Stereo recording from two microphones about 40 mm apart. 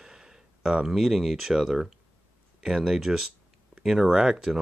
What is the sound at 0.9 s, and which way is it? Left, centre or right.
Speech, centre.